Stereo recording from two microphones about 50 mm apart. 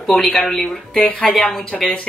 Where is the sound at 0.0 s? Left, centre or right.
Centre.